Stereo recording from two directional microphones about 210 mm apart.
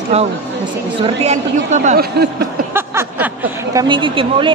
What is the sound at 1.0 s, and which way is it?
Speech, 30° right (ahead or behind).